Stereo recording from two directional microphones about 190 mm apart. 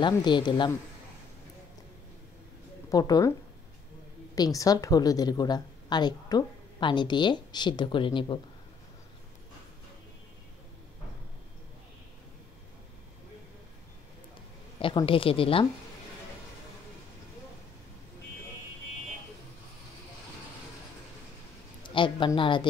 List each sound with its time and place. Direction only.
0.0 s a woman's voice: 25° left (ahead or behind)
2.9 s a woman's voice: 20° left (ahead or behind)
4.4 s a woman's voice: 20° left (ahead or behind)
14.8 s a woman's voice: 25° left (ahead or behind)
21.8 s a woman's voice: 25° left (ahead or behind)